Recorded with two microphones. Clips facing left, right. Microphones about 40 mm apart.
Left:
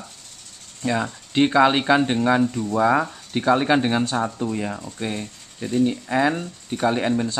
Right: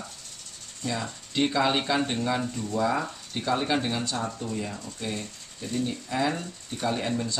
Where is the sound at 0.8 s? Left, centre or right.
Left.